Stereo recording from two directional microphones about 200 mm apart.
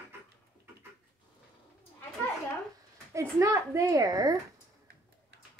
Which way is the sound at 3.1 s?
15° right (ahead or behind).